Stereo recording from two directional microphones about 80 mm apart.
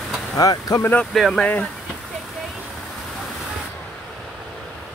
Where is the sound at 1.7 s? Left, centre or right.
Centre.